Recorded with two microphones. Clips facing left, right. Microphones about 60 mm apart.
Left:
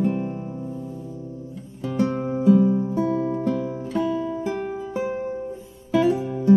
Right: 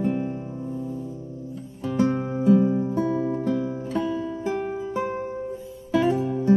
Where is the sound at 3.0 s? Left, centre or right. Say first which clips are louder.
Left 2 dB; centre.